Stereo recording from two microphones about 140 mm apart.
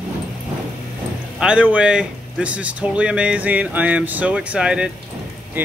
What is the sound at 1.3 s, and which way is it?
A man's voice, 5° right (ahead or behind).